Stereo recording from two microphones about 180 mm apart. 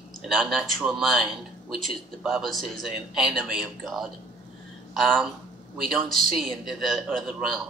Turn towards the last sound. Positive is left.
turn(degrees=0)  # may be behind; listen again after turning